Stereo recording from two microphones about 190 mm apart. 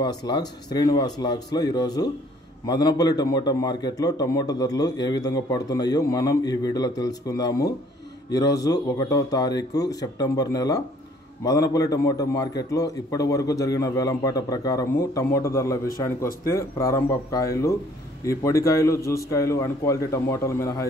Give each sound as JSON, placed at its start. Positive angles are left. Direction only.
{"t": 0.0, "sound": "a man's voice", "side_deg": 20}